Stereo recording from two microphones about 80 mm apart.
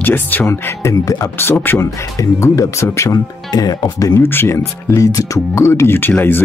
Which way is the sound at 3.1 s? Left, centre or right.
Left.